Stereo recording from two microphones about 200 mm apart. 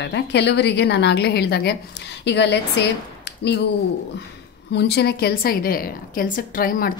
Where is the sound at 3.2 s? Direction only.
55° left (ahead or behind).